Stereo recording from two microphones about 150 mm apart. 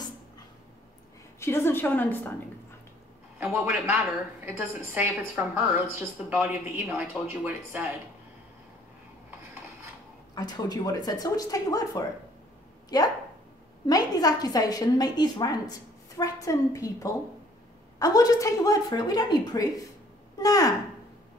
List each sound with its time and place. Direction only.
1.4 s a woman's voice: 15° left (ahead or behind)
3.4 s a woman's voice: 5° right (ahead or behind)
10.3 s a woman's voice: 25° left (ahead or behind)